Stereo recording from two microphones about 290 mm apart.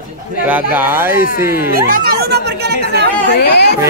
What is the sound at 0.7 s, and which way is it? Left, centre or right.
Speech, centre.